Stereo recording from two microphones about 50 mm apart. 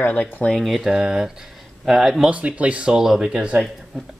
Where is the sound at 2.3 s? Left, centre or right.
Right.